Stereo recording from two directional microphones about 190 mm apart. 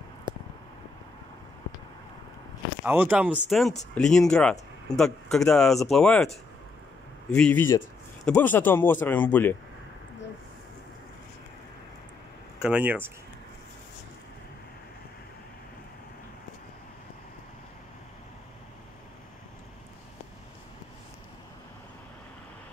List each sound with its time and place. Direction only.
0.3 s a sound: 25° right (ahead or behind)
2.8 s a man's voice: 10° right (ahead or behind); by 9.6 s 10° left (ahead or behind)
12.6 s speech: 5° right (ahead or behind)